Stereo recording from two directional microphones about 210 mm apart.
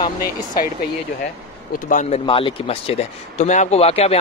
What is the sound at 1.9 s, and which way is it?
A man's voice, 35° left (ahead or behind).